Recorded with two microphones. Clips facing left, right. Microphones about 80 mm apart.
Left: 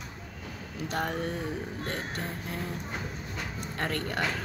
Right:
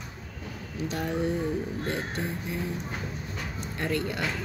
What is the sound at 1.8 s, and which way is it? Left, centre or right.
Music, left.